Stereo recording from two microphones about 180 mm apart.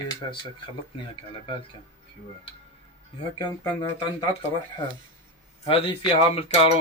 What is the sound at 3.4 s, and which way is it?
Speech, 20° left (ahead or behind).